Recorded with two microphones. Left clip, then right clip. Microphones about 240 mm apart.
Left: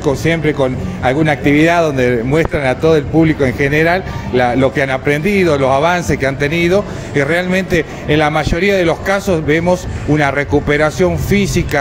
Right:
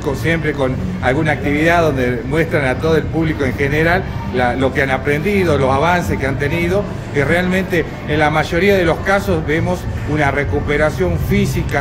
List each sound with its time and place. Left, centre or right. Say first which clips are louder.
0.2 s a man's voice: left 3 dB; left